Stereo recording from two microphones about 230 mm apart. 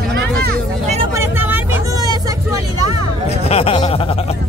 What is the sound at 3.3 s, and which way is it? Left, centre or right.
Speech, left.